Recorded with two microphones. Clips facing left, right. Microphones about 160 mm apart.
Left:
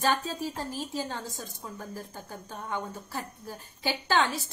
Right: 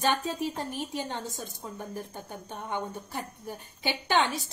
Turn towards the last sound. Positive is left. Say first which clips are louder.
# even
turn(degrees=-20)  # may be behind; listen again after turning